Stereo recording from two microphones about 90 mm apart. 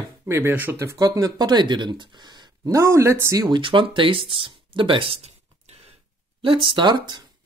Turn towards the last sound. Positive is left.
turn(degrees=-55)  # may be behind; listen again after turning